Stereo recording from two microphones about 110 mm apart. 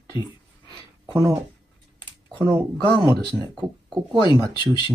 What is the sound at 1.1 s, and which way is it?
Speech, 30° right (ahead or behind).